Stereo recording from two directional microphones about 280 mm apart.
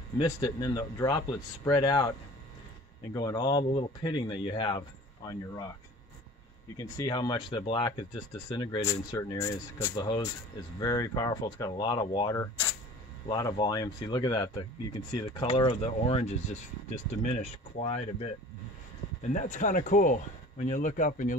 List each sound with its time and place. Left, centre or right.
0.2 s speech: centre
3.2 s speech: centre
6.8 s speech: centre; by 21.4 s left